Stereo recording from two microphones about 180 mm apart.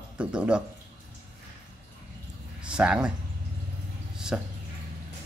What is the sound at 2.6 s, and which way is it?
Speech, 5° right (ahead or behind).